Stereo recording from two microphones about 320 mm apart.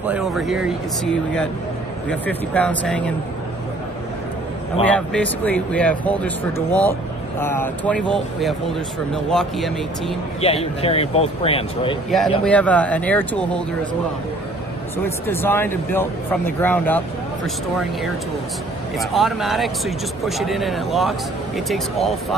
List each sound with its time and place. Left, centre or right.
0.0 s speech: centre
4.8 s speech: centre
10.4 s speech: centre
12.1 s speech: centre
15.0 s speech: centre
18.9 s speech: centre